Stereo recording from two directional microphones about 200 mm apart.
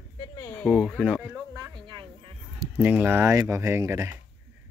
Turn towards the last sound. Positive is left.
turn(degrees=-15)  # may be behind; listen again after turning